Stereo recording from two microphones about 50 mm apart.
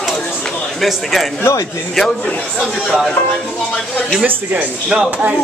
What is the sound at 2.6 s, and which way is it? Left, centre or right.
Speech, centre.